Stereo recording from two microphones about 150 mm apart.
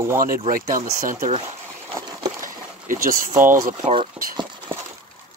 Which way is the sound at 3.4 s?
60° right (ahead or behind).